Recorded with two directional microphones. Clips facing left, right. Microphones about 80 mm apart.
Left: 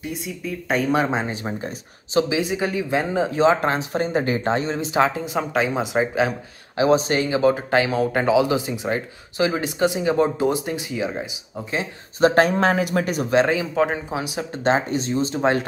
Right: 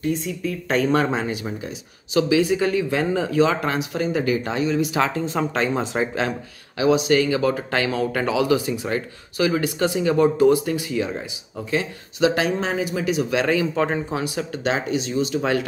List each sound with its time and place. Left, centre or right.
0.0 s speech: centre
1.1 s speech: left
2.2 s speech: left
6.8 s speech: left
12.2 s speech: left
12.5 s speech: left
13.3 s speech: left
13.7 s speech: centre
14.2 s speech: left
14.6 s speech: left